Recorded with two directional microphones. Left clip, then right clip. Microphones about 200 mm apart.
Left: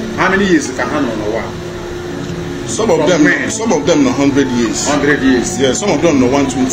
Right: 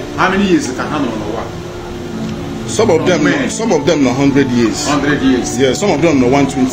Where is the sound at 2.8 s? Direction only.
55° right (ahead or behind).